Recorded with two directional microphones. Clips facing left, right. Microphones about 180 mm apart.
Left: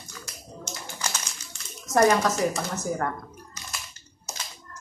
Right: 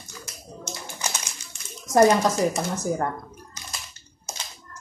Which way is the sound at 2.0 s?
15° right (ahead or behind).